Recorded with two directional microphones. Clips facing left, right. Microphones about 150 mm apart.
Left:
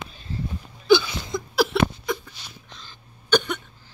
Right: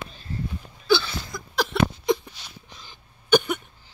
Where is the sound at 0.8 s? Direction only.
15° left (ahead or behind).